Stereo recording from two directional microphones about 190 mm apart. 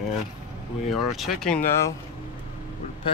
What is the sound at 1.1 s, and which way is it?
Speech, centre (ahead or behind).